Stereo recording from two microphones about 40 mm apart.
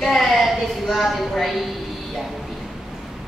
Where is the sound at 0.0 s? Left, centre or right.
Centre.